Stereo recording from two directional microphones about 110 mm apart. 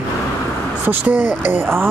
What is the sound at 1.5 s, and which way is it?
Speech, 20° right (ahead or behind).